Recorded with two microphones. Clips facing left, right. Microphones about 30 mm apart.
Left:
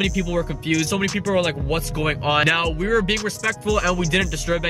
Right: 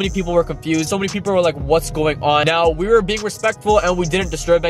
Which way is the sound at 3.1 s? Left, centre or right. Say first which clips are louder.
Right 3 dB; centre.